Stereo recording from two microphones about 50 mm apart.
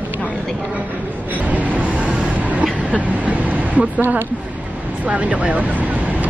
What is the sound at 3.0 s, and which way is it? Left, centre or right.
Vehicle, right.